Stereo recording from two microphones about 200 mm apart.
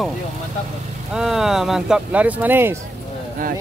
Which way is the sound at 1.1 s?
Centre (ahead or behind).